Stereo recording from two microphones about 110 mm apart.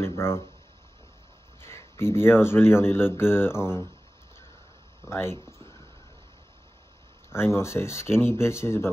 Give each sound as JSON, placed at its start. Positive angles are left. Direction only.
{"t": 0.0, "sound": "a sound", "side_deg": 25}
{"t": 1.6, "sound": "speech", "side_deg": 25}
{"t": 5.0, "sound": "speech", "side_deg": 25}
{"t": 7.2, "sound": "speech", "side_deg": 25}